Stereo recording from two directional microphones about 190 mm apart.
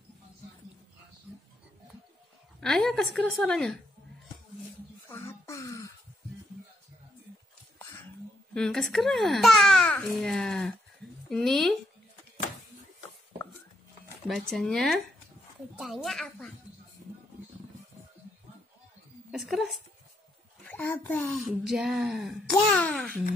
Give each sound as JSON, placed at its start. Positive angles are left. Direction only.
{"t": 2.6, "sound": "speech", "side_deg": 5}
{"t": 5.0, "sound": "a sound", "side_deg": 15}
{"t": 8.5, "sound": "speech", "side_deg": 5}
{"t": 14.2, "sound": "speech", "side_deg": 0}
{"t": 19.3, "sound": "a child's voice", "side_deg": 0}